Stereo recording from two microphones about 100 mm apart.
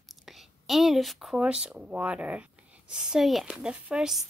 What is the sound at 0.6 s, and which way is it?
Speech, centre (ahead or behind).